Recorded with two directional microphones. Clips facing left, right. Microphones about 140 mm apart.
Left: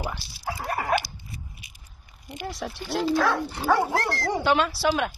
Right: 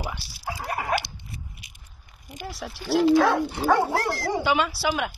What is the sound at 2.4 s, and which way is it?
Speech, centre (ahead or behind).